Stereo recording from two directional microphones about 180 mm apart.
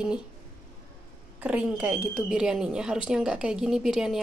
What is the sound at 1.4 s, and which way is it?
A woman's voice, 5° right (ahead or behind).